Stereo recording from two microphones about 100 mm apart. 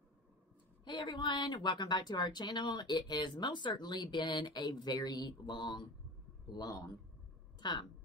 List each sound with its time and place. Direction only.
0.8 s a woman's voice: 50° left (ahead or behind)
6.5 s a man's voice: 40° left (ahead or behind)